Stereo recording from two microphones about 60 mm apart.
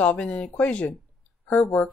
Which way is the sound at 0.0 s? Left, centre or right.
Left.